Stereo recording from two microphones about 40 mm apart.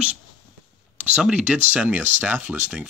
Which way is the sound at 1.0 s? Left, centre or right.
Right.